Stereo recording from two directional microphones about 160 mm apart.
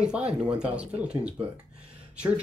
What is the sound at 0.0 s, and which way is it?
Speech, 5° right (ahead or behind).